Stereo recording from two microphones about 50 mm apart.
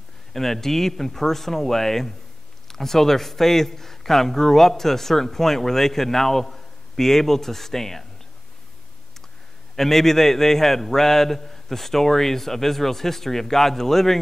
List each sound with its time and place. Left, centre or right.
0.3 s speech: centre
9.8 s a man's voice: centre